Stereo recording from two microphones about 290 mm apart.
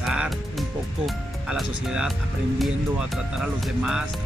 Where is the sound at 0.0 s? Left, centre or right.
Centre.